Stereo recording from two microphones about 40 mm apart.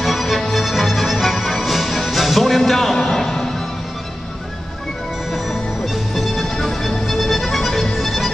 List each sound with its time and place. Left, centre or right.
0.0 s music: centre
6.1 s music: centre